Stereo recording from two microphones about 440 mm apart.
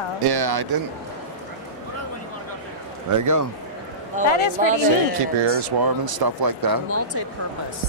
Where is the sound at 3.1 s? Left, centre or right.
Right.